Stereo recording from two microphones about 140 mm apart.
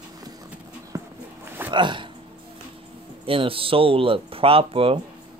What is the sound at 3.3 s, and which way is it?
Speech, 40° right (ahead or behind).